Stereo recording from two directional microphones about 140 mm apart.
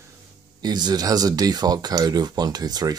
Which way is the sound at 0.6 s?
30° right (ahead or behind).